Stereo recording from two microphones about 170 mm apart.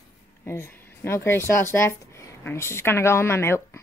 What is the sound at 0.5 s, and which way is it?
Speech, 15° left (ahead or behind).